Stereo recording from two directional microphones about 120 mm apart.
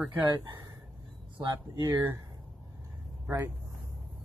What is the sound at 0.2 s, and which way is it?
Speech, 35° right (ahead or behind).